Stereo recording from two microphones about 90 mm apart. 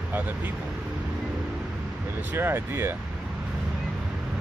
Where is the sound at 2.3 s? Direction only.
25° right (ahead or behind).